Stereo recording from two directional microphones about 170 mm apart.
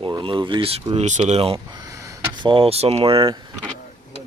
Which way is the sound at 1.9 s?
20° right (ahead or behind).